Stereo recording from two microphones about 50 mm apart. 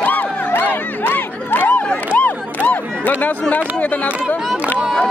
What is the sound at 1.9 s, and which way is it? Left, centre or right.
Crowd, left.